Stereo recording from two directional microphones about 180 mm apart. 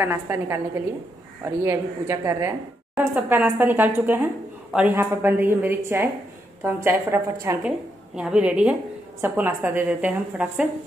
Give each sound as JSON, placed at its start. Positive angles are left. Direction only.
{"t": 0.0, "sound": "a woman's voice", "side_deg": -15}